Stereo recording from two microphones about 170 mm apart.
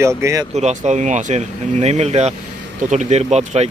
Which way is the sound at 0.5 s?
40° right (ahead or behind).